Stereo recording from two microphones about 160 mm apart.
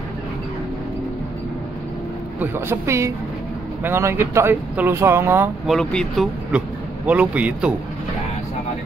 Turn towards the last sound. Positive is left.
turn(degrees=-10)  # may be behind; listen again after turning